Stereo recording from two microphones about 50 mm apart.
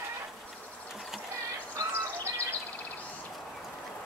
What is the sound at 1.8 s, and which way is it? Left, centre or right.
Bird, right.